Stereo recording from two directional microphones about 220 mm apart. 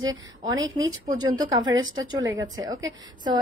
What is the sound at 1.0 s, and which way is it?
A woman's voice, 15° right (ahead or behind).